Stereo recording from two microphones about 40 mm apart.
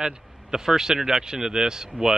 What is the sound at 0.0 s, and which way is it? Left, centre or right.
Speech, centre.